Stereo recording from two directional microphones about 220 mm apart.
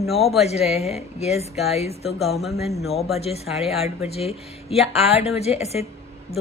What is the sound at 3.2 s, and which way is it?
Speech, 30° left (ahead or behind).